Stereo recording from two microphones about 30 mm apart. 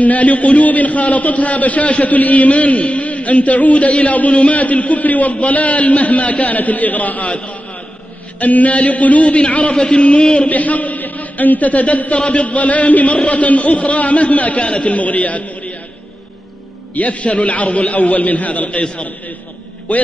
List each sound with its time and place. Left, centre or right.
0.0 s a man's voice: left
2.1 s a man's voice: left
8.4 s a man's voice: left
9.7 s a man's voice: left
10.5 s a man's voice: left
16.9 s a man's voice: left